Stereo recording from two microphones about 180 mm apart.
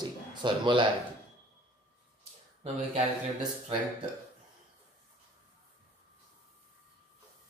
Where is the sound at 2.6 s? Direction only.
30° right (ahead or behind).